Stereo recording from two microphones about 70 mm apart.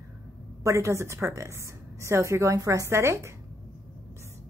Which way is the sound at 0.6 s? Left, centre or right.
Right.